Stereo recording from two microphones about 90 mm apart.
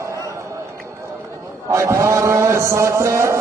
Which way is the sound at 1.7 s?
35° right (ahead or behind).